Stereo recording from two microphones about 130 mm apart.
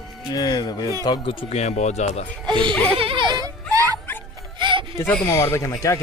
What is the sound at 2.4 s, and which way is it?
Speech, 40° right (ahead or behind).